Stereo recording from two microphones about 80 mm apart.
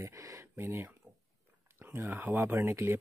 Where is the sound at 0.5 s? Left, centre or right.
Right.